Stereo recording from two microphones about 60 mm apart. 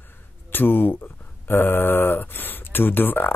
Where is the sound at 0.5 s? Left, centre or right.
Left.